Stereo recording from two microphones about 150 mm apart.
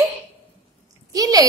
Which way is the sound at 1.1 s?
25° right (ahead or behind).